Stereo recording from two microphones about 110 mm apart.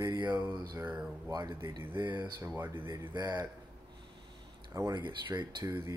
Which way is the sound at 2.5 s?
20° right (ahead or behind).